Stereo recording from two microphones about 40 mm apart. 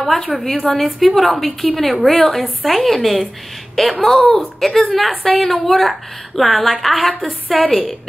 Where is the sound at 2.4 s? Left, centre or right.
Centre.